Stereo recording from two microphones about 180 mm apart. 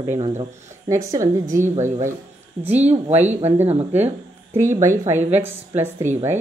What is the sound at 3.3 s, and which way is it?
Speech, 35° right (ahead or behind).